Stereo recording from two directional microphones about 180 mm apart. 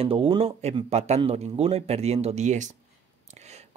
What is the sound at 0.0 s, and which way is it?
Speech, 30° right (ahead or behind).